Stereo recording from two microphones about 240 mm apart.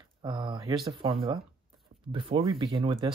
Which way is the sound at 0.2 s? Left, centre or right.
Centre.